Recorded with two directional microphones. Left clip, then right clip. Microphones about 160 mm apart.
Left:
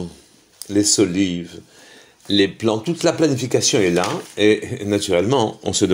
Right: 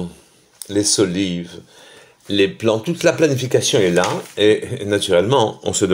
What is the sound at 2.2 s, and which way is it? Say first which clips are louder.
Speech: right 1 dB; 30° left (ahead or behind).